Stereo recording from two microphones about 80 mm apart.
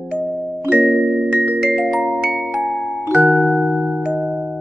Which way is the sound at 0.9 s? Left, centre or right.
Centre.